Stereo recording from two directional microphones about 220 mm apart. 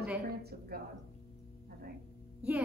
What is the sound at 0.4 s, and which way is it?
Speech, 45° right (ahead or behind).